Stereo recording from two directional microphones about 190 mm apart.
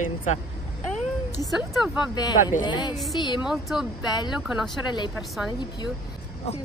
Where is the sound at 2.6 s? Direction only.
25° left (ahead or behind).